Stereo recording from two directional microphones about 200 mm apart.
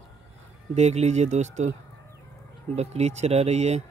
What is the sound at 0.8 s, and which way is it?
Speech, 35° right (ahead or behind).